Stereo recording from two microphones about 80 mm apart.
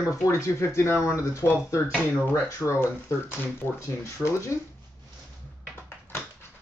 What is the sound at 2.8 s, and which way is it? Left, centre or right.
Speech, left.